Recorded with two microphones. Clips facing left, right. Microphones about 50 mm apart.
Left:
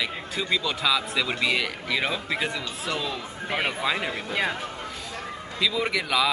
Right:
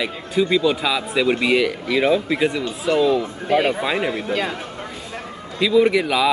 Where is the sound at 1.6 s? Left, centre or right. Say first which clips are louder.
Right 8 dB; centre.